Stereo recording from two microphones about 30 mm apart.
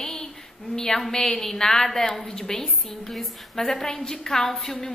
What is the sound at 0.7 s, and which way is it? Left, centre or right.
A woman's voice, centre.